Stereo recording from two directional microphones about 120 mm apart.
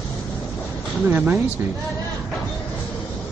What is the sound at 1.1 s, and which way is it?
Speech, 15° right (ahead or behind).